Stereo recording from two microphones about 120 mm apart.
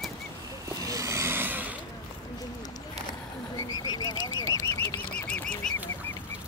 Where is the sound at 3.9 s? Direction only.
35° left (ahead or behind).